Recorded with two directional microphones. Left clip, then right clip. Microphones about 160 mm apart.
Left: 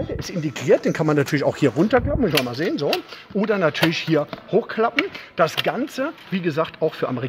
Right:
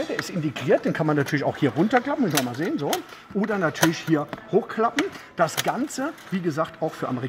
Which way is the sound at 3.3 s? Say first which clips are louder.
Left 5 dB; 75° left (ahead or behind).